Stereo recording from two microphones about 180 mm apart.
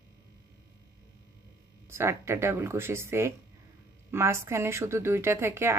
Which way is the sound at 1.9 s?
15° right (ahead or behind).